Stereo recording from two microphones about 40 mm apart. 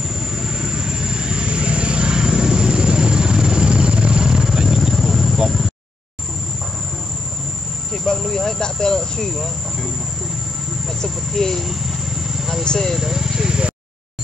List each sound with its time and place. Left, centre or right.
0.1 s vehicle: centre
4.5 s vehicle: centre
7.9 s a sound: centre
9.3 s speech: centre
11.0 s speech: centre
11.6 s vehicle: centre
12.6 s speech: centre
12.9 s speech: centre